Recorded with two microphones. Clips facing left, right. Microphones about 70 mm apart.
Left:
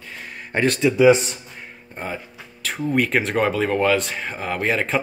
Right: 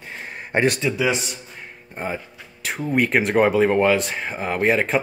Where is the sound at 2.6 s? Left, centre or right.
Centre.